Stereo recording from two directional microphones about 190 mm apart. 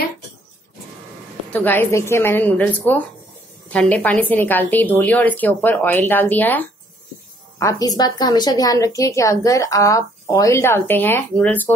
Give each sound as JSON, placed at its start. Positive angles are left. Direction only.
{"t": 1.5, "sound": "a woman's voice", "side_deg": 10}